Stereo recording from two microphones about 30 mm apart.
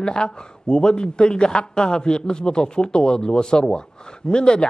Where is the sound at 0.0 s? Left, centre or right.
Left.